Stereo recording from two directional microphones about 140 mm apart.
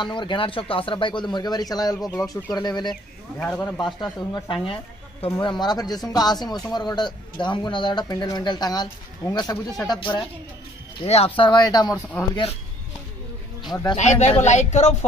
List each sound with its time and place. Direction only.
0.0 s a man's voice: 35° left (ahead or behind)
2.0 s speech: 5° left (ahead or behind)
2.5 s a man's voice: 30° left (ahead or behind)
3.3 s speech: 10° left (ahead or behind)
4.0 s a man's voice: 35° left (ahead or behind)
11.1 s a man's voice: 45° left (ahead or behind); by 12.0 s 30° left (ahead or behind)
13.7 s speech: 30° left (ahead or behind)
14.2 s speech: 55° left (ahead or behind)